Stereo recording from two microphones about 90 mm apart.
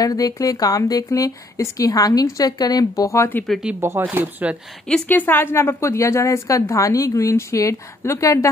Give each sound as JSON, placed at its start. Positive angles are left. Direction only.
{"t": 0.0, "sound": "speech", "side_deg": 40}
{"t": 3.8, "sound": "speech", "side_deg": -25}
{"t": 5.0, "sound": "a woman's voice", "side_deg": 20}